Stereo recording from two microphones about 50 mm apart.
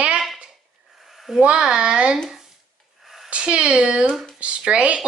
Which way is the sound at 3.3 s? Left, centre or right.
Right.